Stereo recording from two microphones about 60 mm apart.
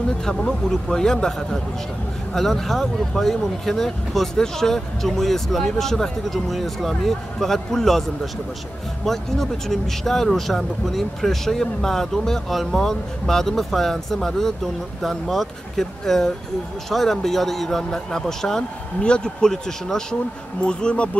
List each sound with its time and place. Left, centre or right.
0.2 s speech: centre
9.0 s speech: centre